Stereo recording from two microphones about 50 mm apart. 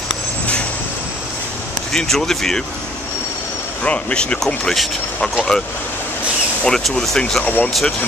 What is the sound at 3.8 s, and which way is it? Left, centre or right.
Speech, left.